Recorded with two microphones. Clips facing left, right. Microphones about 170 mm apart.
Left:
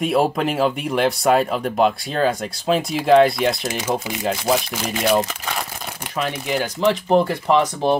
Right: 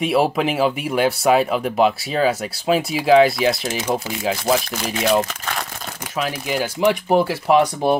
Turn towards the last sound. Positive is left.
turn(degrees=-10)  # may be behind; listen again after turning